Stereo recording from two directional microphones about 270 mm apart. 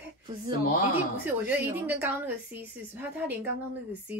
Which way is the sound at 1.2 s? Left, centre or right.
Centre.